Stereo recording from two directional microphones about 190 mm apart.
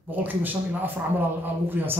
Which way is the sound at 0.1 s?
10° right (ahead or behind).